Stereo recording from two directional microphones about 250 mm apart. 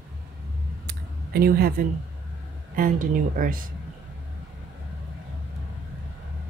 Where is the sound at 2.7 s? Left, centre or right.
Right.